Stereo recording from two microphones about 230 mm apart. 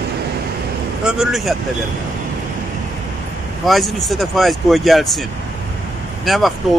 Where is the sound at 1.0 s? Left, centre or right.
Centre.